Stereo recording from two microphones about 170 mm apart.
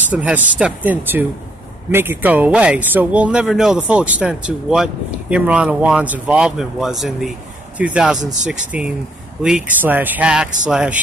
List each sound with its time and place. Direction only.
0.1 s speech: 10° right (ahead or behind)